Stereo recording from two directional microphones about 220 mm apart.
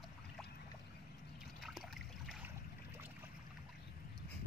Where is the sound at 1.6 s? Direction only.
Centre (ahead or behind).